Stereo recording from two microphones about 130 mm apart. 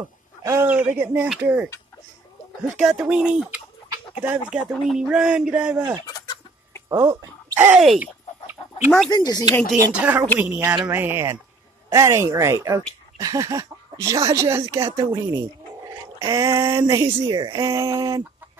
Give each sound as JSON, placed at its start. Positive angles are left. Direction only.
{"t": 0.4, "sound": "a sound", "side_deg": -25}
{"t": 0.7, "sound": "speech", "side_deg": -15}
{"t": 6.9, "sound": "speech", "side_deg": -25}
{"t": 8.0, "sound": "chicken", "side_deg": -15}
{"t": 9.1, "sound": "speech", "side_deg": 30}
{"t": 9.9, "sound": "speech", "side_deg": -10}